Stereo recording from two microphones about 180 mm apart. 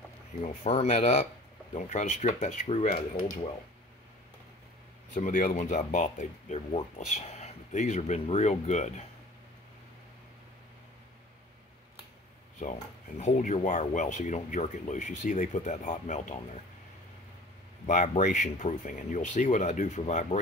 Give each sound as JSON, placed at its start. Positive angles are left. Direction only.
{"t": 0.5, "sound": "speech", "side_deg": 40}
{"t": 5.1, "sound": "speech", "side_deg": 50}
{"t": 12.5, "sound": "speech", "side_deg": 40}
{"t": 17.8, "sound": "speech", "side_deg": 45}